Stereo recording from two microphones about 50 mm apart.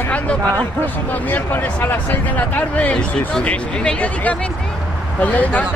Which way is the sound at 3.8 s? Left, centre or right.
Left.